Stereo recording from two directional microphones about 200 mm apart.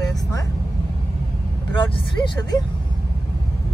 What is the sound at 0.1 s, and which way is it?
Vehicle, 15° left (ahead or behind).